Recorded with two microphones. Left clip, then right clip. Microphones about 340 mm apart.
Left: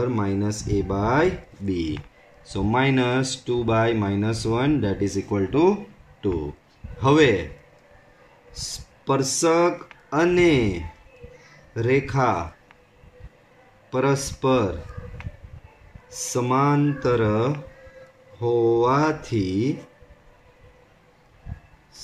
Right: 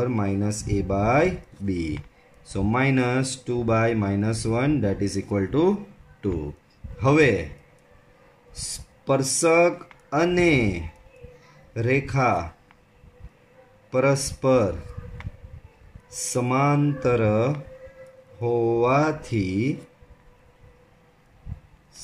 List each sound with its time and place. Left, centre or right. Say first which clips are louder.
0.0 s speech: left 1 dB; centre
7.0 s speech: left 1 dB; centre
9.0 s speech: even; centre
13.8 s speech: right 1 dB; centre
16.3 s speech: left 1 dB; centre